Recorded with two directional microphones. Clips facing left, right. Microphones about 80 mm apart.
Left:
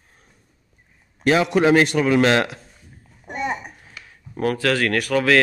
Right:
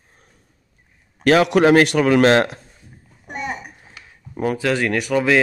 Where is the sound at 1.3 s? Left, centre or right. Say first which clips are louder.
Right 3 dB; right.